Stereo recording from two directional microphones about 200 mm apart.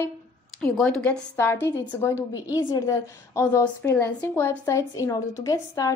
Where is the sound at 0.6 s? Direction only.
5° left (ahead or behind).